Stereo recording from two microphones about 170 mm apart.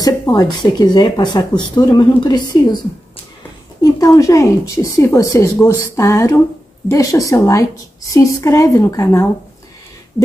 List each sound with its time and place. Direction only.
0.0 s a woman's voice: 20° left (ahead or behind)
3.8 s a woman's voice: 20° left (ahead or behind)